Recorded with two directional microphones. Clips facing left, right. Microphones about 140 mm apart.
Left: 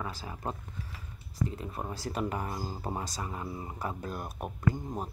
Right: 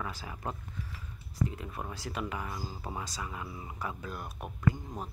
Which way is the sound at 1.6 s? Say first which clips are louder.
Left 3 dB; 30° left (ahead or behind).